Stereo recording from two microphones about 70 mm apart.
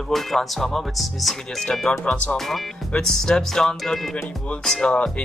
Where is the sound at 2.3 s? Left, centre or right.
Centre.